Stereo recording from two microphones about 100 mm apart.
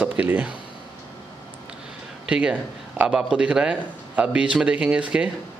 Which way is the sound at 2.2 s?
10° right (ahead or behind).